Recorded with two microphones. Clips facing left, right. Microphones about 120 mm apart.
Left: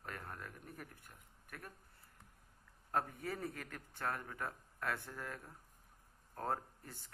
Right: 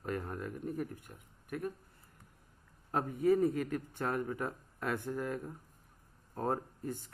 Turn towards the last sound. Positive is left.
turn(degrees=-20)  # may be behind; listen again after turning